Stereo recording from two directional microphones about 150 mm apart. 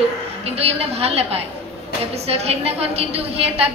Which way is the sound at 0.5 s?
40° right (ahead or behind).